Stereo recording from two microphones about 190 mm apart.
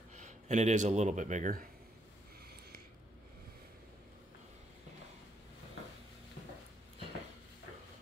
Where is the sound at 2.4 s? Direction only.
55° right (ahead or behind).